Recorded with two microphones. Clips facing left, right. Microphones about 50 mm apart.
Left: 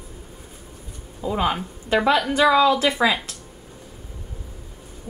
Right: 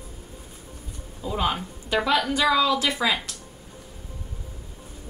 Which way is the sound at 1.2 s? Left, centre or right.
Left.